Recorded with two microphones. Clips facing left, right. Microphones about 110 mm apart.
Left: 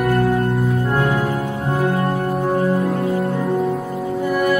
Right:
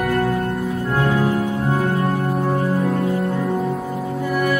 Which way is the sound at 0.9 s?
15° left (ahead or behind).